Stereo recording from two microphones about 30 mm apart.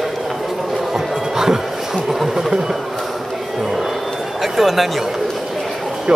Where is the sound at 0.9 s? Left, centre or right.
Centre.